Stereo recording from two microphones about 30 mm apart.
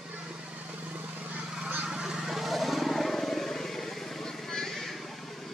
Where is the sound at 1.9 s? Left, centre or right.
Right.